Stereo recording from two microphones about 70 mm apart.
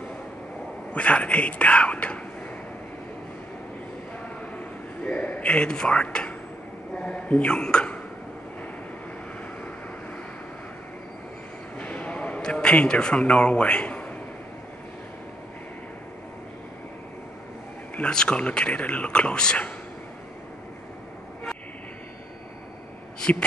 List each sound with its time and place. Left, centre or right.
0.9 s speech: centre
5.0 s a sound: centre
7.0 s a man's voice: centre
11.8 s a sound: centre
17.9 s speech: centre
23.2 s a man's voice: centre